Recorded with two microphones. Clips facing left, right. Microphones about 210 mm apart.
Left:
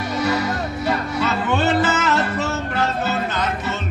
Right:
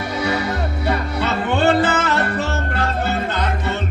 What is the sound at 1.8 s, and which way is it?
Music, 60° right (ahead or behind).